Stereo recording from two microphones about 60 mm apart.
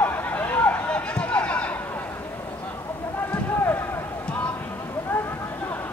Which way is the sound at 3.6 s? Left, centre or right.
Left.